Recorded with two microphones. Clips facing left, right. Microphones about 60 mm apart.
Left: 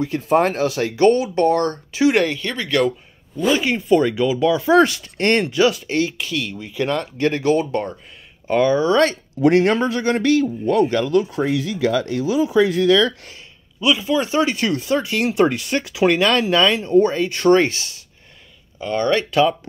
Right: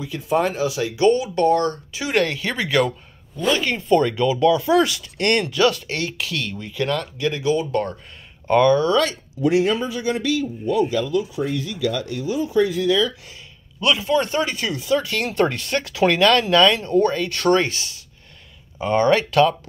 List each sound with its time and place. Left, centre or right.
0.0 s speech: left
2.4 s speech: centre
3.3 s speech: centre
6.8 s speech: left
7.2 s speech: left
8.5 s speech: centre
8.9 s speech: left
9.4 s a man's voice: left
13.7 s speech: centre
14.4 s speech: left
15.0 s speech: centre
18.8 s speech: right